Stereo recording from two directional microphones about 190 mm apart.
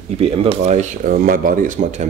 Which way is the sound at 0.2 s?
30° right (ahead or behind).